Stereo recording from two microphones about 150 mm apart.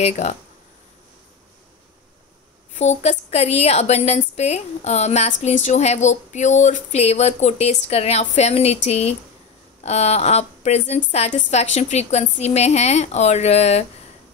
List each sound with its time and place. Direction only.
0.0 s a woman's voice: 45° left (ahead or behind)
2.7 s a woman's voice: 50° left (ahead or behind)